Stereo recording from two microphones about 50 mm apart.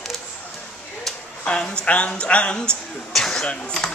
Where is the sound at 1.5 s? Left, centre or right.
Centre.